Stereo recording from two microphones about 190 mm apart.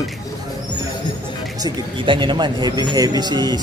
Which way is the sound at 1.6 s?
25° right (ahead or behind).